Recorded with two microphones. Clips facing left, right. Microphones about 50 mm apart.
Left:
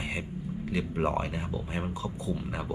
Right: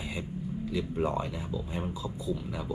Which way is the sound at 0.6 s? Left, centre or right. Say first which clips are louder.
Left 1 dB; left.